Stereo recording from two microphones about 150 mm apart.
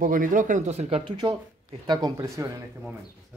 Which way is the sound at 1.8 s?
30° right (ahead or behind).